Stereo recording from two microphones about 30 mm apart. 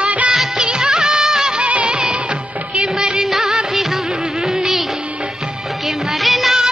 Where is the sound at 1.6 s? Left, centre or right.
Right.